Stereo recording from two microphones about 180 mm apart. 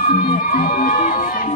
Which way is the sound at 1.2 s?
50° left (ahead or behind).